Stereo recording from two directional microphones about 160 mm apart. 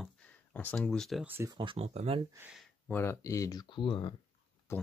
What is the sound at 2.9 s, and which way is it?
Speech, 15° left (ahead or behind).